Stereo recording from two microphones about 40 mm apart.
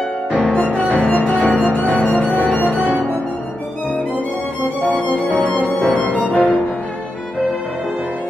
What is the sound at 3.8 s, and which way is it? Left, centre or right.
Violin, left.